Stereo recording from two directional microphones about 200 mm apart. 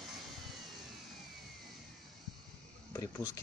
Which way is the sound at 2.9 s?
15° left (ahead or behind).